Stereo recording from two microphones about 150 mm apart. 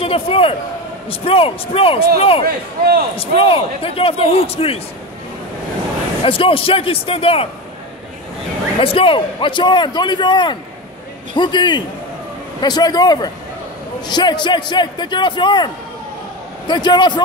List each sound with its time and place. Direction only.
0.0 s a man's voice: 40° left (ahead or behind)
2.4 s speech: 90° right
3.2 s speech: 35° left (ahead or behind)
6.2 s speech: 35° left (ahead or behind)
8.7 s a man's voice: 35° left (ahead or behind)